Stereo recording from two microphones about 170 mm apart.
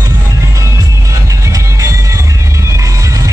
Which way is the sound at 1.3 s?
20° right (ahead or behind).